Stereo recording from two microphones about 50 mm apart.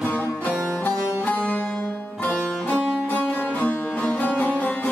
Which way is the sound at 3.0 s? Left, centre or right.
Left.